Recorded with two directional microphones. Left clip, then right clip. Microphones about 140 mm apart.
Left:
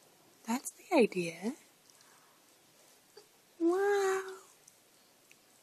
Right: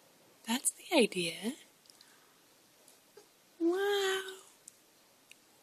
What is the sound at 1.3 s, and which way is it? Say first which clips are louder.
Speech: even; 5° left (ahead or behind).